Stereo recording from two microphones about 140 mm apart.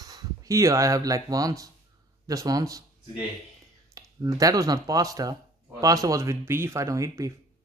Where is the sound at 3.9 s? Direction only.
25° right (ahead or behind).